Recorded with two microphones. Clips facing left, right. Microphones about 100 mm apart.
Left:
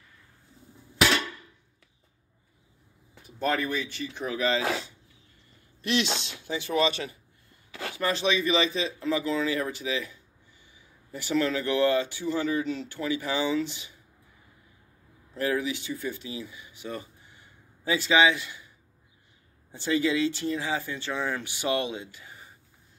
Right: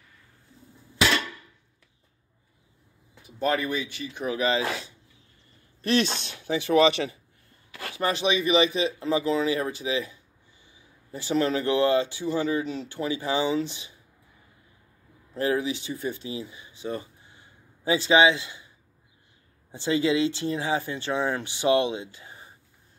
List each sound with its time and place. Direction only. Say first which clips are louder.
3.3 s speech: right 2 dB; 5° right (ahead or behind)
4.4 s speech: right 1 dB; 15° right (ahead or behind)
5.8 s a sound: right 4 dB; 40° right (ahead or behind)
6.2 s speech: right 6 dB; 65° right (ahead or behind)
7.9 s speech: right 2 dB; 20° right (ahead or behind)
15.3 s speech: right 2 dB; 25° right (ahead or behind)
19.7 s speech: right 2 dB; 20° right (ahead or behind)